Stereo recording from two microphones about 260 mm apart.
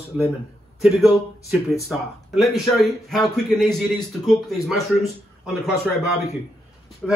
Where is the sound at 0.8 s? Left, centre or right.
Centre.